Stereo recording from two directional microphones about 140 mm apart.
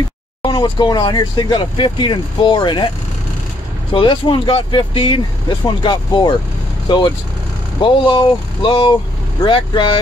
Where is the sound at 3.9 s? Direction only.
40° left (ahead or behind).